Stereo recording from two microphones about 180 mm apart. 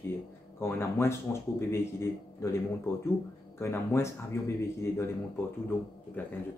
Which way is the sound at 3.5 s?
15° left (ahead or behind).